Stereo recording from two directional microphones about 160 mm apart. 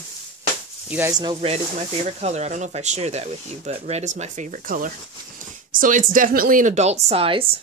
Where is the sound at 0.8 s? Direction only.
10° right (ahead or behind).